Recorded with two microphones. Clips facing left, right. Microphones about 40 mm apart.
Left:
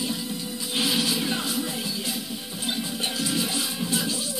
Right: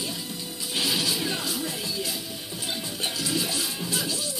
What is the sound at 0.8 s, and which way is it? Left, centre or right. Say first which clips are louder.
Music: left 2 dB; left.